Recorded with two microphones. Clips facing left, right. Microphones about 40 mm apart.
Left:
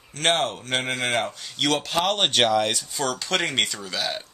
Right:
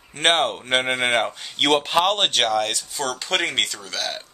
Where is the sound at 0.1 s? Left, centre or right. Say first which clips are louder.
Right 3 dB; right.